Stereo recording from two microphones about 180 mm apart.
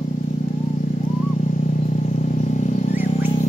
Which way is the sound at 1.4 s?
45° left (ahead or behind).